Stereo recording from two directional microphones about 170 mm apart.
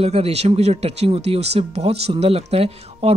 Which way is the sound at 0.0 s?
40° right (ahead or behind).